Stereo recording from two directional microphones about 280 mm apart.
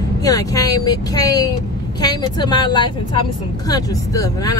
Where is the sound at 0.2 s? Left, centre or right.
Centre.